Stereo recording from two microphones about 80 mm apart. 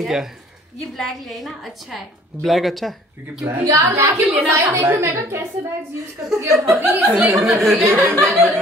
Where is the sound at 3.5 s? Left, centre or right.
Right.